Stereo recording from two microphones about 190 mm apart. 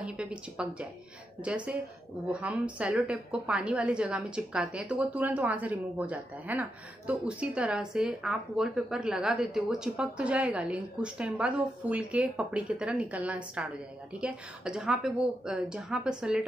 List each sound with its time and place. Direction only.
0.0 s a woman's voice: 5° right (ahead or behind)